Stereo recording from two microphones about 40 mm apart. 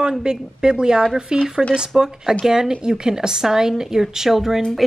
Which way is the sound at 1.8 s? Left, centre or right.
Centre.